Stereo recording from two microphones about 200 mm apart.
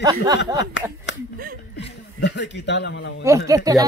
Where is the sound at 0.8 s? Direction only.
70° left (ahead or behind).